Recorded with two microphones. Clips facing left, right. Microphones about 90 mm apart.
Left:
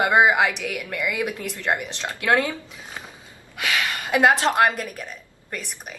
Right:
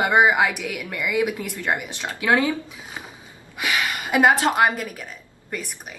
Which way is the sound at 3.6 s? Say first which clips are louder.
Right 1 dB; 15° right (ahead or behind).